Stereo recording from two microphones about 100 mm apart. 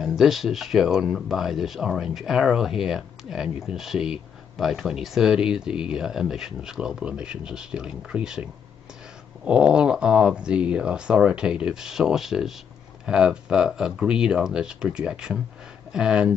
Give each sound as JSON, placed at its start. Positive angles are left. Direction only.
{"t": 0.0, "sound": "speech", "side_deg": -5}